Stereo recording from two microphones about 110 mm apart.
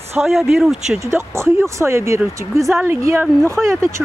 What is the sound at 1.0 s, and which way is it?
Speech, 25° right (ahead or behind).